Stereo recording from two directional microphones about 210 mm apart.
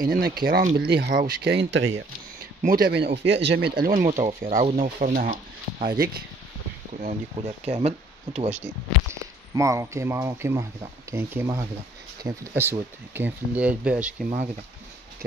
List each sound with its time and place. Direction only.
0.1 s speech: 45° right (ahead or behind)
2.6 s speech: 45° right (ahead or behind)
7.0 s speech: 30° right (ahead or behind)
9.1 s speech: 15° right (ahead or behind)